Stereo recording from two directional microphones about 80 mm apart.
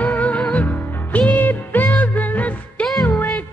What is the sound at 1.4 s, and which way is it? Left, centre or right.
Music, left.